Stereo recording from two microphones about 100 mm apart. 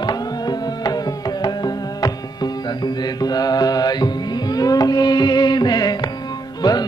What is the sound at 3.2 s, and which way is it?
Music, 40° left (ahead or behind).